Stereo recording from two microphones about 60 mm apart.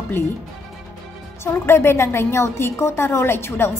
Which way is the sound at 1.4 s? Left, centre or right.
Left.